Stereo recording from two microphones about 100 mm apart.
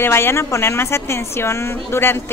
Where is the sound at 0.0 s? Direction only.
25° left (ahead or behind).